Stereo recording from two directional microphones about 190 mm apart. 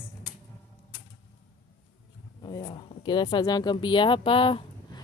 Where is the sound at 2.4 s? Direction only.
25° left (ahead or behind).